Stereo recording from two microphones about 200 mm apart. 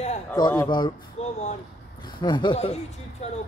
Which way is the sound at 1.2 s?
35° left (ahead or behind).